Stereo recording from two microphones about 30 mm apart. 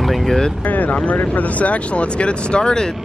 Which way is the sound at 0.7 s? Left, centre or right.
Left.